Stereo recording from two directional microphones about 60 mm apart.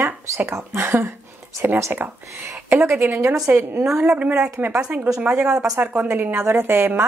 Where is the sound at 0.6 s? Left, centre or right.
Right.